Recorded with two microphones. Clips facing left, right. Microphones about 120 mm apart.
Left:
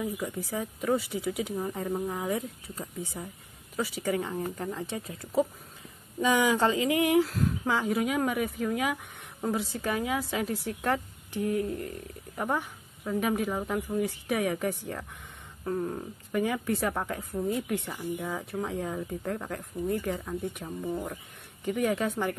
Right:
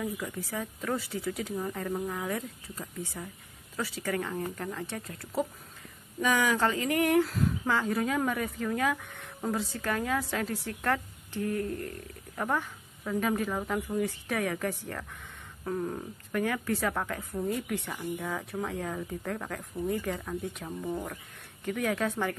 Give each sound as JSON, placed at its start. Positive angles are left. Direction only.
{"t": 0.0, "sound": "speech", "side_deg": 15}
{"t": 7.2, "sound": "speech", "side_deg": 0}
{"t": 7.6, "sound": "speech", "side_deg": 10}
{"t": 17.5, "sound": "speech", "side_deg": 5}